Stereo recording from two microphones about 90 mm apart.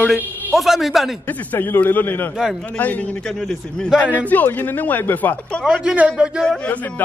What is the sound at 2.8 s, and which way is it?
Speech, 20° left (ahead or behind).